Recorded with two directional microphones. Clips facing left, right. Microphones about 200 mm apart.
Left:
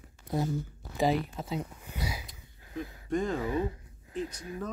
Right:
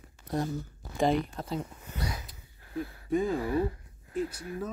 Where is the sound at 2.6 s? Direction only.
20° left (ahead or behind).